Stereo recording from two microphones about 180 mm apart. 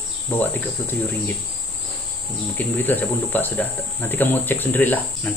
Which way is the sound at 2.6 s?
10° left (ahead or behind).